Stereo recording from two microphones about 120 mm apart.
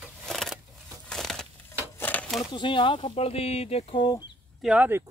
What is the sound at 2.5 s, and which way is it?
Speech, 45° left (ahead or behind).